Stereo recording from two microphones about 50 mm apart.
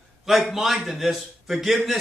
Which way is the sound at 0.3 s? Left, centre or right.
Centre.